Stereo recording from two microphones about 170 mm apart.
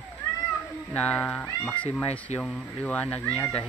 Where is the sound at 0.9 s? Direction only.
5° left (ahead or behind).